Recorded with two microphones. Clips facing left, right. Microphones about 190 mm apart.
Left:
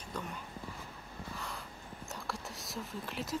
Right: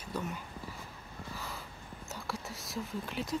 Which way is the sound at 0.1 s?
5° right (ahead or behind).